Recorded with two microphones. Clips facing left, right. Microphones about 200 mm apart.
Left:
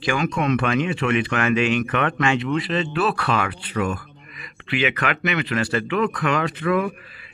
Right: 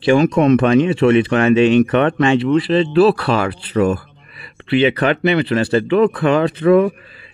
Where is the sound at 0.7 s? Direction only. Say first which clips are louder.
Right 9 dB; 25° right (ahead or behind).